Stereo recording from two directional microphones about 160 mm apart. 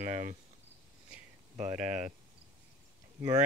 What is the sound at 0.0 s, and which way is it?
Speech, 50° right (ahead or behind).